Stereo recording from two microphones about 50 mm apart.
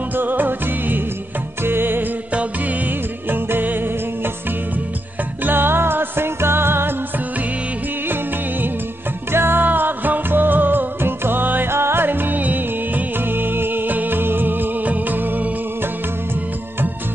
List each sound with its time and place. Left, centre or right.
0.1 s music: right
3.3 s music: right
5.4 s music: right
9.3 s music: right
11.7 s music: right